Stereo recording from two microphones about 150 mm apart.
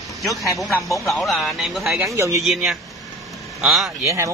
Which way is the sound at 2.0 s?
20° right (ahead or behind).